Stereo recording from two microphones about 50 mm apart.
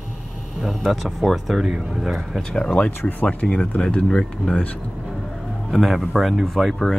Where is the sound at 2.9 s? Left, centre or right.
Left.